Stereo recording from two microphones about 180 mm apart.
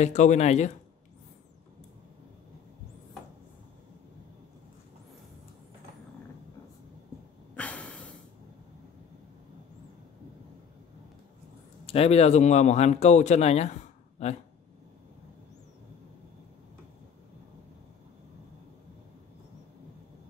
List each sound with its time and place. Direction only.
0.0 s speech: 40° left (ahead or behind)
7.5 s snort: 5° left (ahead or behind)
11.8 s speech: 35° left (ahead or behind)